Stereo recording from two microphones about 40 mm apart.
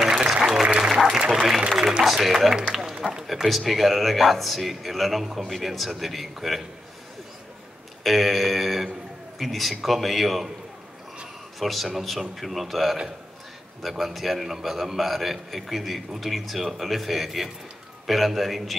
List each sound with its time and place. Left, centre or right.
0.0 s applause: centre
2.0 s a man's voice: centre
8.0 s a man's voice: centre
11.6 s a man's voice: centre